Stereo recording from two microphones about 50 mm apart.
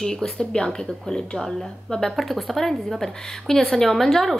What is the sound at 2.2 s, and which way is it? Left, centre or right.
A woman's voice, centre.